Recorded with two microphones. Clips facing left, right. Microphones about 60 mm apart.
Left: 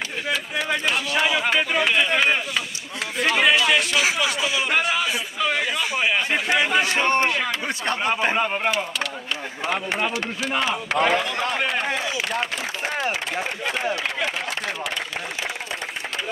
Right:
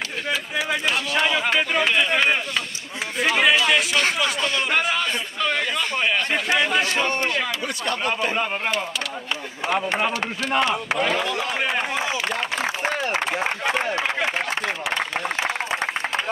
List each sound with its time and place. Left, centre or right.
0.3 s a sound: centre
7.6 s speech: left
8.4 s speech: centre
10.2 s speech: centre